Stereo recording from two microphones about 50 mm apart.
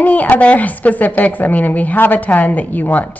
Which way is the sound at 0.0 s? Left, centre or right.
Left.